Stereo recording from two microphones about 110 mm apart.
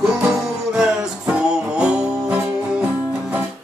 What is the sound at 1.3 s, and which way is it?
Music, 10° right (ahead or behind).